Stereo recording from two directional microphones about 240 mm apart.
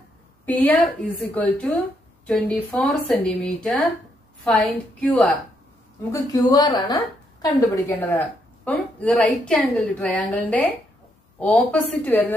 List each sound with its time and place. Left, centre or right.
0.5 s a woman's voice: centre